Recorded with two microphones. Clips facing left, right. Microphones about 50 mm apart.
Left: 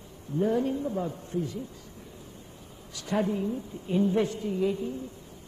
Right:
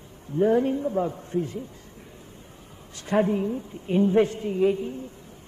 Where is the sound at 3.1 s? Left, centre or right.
Right.